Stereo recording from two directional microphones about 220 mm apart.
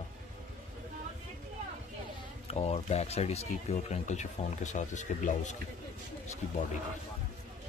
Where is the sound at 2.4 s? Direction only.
30° left (ahead or behind).